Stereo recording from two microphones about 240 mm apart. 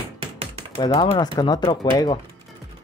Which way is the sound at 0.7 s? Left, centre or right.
Centre.